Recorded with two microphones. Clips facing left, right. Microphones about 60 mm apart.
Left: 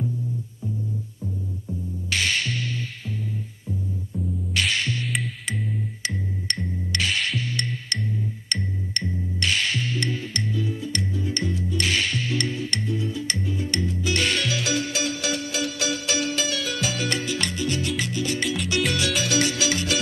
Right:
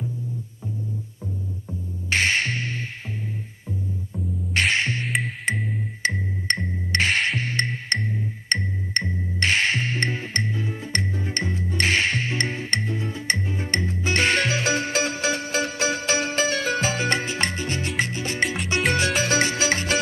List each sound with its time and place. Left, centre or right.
1.7 s music: right
4.6 s music: right
6.0 s music: right